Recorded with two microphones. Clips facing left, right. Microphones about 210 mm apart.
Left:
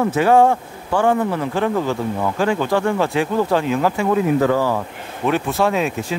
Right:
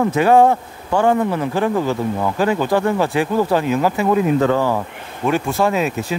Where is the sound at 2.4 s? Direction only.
15° right (ahead or behind).